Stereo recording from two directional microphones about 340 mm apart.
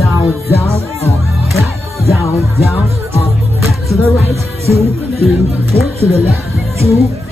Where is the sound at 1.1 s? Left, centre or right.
Centre.